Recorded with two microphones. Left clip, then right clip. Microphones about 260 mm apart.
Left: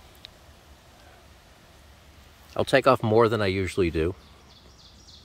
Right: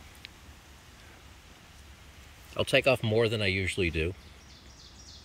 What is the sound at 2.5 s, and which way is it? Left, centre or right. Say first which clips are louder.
Speech: left 5 dB; centre.